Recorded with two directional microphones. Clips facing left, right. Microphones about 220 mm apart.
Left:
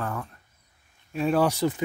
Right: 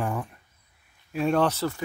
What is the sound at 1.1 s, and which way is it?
Speech, centre (ahead or behind).